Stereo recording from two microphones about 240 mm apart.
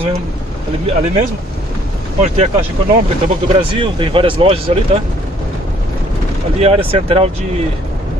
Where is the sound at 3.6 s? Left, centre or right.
Right.